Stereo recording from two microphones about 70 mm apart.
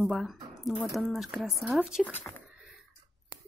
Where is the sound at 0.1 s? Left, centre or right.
Centre.